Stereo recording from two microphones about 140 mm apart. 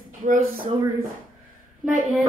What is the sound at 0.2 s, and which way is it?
Speech, 80° right.